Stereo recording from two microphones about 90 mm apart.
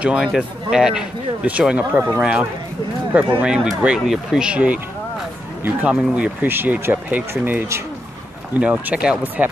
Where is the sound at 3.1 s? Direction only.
20° right (ahead or behind).